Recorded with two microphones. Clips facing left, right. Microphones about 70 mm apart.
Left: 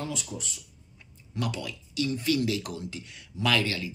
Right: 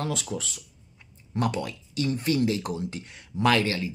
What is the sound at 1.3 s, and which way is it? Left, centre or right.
Speech, right.